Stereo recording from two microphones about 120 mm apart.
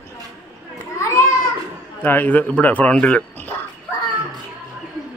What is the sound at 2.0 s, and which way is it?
A man's voice, 15° left (ahead or behind).